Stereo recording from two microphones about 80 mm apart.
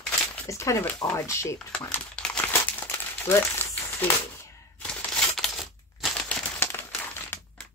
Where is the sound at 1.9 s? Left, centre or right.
Centre.